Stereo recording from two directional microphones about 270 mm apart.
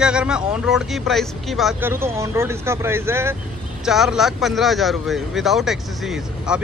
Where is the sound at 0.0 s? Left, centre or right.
Centre.